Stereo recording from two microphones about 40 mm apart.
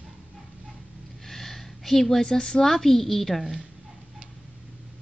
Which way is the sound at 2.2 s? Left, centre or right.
Left.